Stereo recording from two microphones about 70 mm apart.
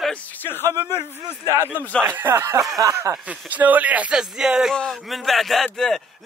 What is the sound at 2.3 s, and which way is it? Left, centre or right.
Speech, right.